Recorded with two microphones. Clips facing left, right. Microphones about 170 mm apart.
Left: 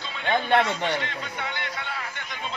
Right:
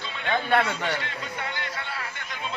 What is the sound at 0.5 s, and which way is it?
Speech, 15° left (ahead or behind).